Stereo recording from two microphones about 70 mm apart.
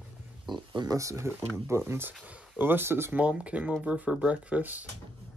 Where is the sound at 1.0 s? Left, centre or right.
Right.